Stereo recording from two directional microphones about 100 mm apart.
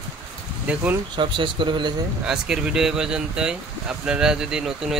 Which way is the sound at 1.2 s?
55° right (ahead or behind).